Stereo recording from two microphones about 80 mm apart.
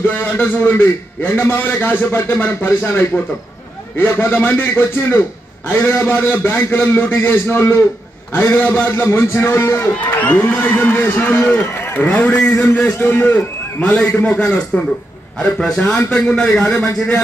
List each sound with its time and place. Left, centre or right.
0.0 s a man's voice: left
10.2 s a man's voice: centre
15.3 s a man's voice: centre